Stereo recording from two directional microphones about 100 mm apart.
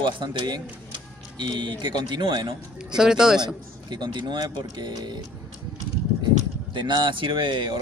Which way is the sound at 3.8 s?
50° right (ahead or behind).